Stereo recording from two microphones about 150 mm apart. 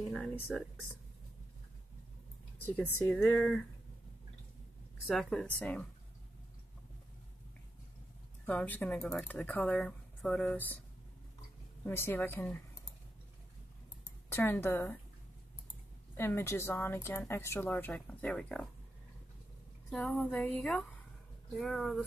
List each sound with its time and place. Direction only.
0.1 s speech: 5° left (ahead or behind)
3.3 s speech: 5° left (ahead or behind)
5.0 s speech: 5° left (ahead or behind)
8.5 s a woman's voice: 10° left (ahead or behind)
11.8 s a woman's voice: 15° left (ahead or behind)
14.3 s a woman's voice: 15° left (ahead or behind)
16.2 s a woman's voice: 15° left (ahead or behind)
19.9 s a woman's voice: 10° left (ahead or behind)